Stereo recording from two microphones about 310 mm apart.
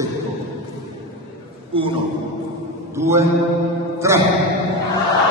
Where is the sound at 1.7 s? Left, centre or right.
Centre.